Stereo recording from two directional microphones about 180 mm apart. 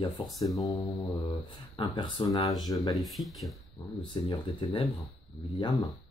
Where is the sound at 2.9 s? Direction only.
Centre (ahead or behind).